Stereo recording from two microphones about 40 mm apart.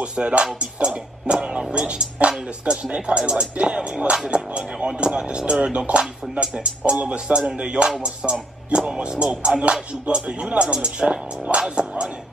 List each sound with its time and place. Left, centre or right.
0.0 s speech: right
9.6 s music: right
10.4 s speech: right